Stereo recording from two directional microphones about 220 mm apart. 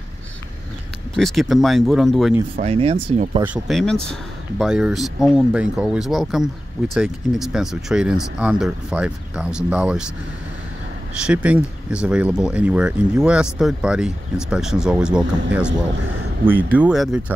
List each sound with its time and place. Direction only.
1.1 s speech: centre (ahead or behind)
2.5 s speech: 25° right (ahead or behind)
3.4 s speech: 5° right (ahead or behind)
11.2 s speech: 5° right (ahead or behind)